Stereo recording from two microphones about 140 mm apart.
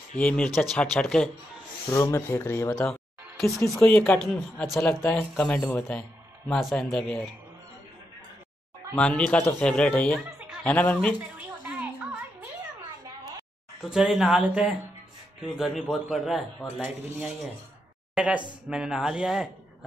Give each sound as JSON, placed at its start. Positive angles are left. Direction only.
{"t": 0.2, "sound": "a man's voice", "side_deg": 10}
{"t": 1.9, "sound": "a man's voice", "side_deg": 20}
{"t": 3.9, "sound": "speech", "side_deg": 15}
{"t": 4.2, "sound": "a man's voice", "side_deg": 0}
{"t": 8.9, "sound": "speech", "side_deg": 5}
{"t": 9.7, "sound": "speech", "side_deg": 5}
{"t": 13.8, "sound": "a man's voice", "side_deg": -5}
{"t": 18.1, "sound": "a man's voice", "side_deg": -10}